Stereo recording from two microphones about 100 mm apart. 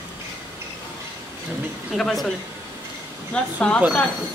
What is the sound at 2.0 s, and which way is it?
Speech, centre (ahead or behind).